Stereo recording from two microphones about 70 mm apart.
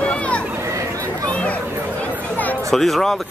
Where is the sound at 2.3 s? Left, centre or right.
Left.